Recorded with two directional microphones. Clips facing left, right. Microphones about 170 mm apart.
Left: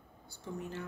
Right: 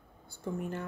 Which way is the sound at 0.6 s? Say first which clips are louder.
Right 2 dB; 55° right (ahead or behind).